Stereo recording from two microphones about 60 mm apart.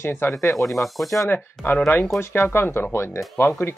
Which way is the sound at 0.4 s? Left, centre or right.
Left.